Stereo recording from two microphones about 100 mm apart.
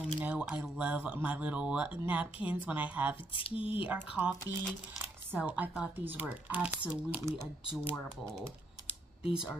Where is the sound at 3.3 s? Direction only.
65° left (ahead or behind).